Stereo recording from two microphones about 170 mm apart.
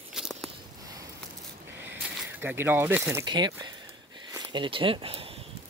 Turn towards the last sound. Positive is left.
turn(degrees=-30)  # may be behind; listen again after turning